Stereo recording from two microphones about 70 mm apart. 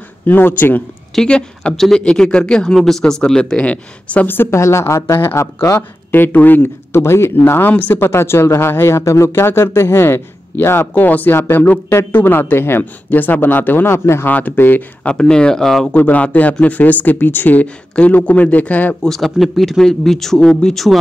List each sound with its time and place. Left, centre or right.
0.3 s speech: left
1.1 s speech: centre
4.4 s a woman's voice: left
5.8 s speech: left
13.9 s speech: left
14.2 s speech: left
15.0 s speech: centre
15.9 s speech: left
19.0 s speech: centre